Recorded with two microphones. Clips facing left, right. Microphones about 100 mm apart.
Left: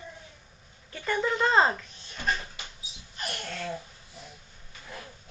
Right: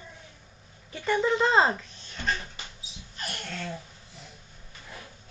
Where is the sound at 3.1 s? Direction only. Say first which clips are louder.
Left 1 dB; 5° left (ahead or behind).